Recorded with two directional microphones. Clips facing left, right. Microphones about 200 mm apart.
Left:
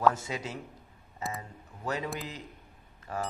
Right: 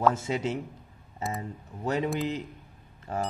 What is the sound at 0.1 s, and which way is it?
Speech, 25° right (ahead or behind).